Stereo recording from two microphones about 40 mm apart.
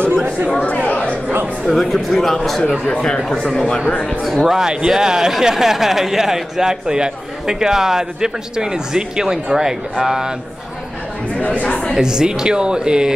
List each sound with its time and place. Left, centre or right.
0.8 s chatter: left
1.7 s speech: centre
4.5 s a man's voice: centre
11.4 s speech: left
11.9 s speech: centre